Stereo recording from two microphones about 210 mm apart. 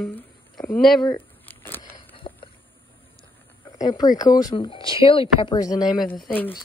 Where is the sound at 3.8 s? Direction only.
20° left (ahead or behind).